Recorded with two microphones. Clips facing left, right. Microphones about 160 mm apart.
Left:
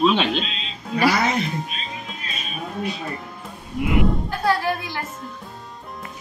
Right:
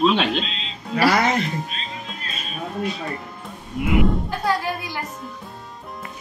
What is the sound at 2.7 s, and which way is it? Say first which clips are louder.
Music: right 1 dB; centre (ahead or behind).